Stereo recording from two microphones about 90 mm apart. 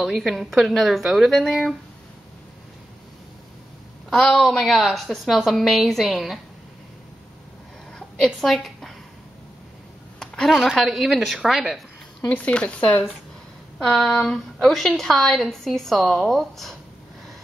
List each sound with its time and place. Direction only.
0.0 s a woman's voice: 5° right (ahead or behind)
4.1 s a woman's voice: 5° left (ahead or behind)
8.4 s a woman's voice: 5° left (ahead or behind)
10.1 s a woman's voice: 5° left (ahead or behind)
12.3 s speech: 15° left (ahead or behind)
13.7 s a woman's voice: centre (ahead or behind)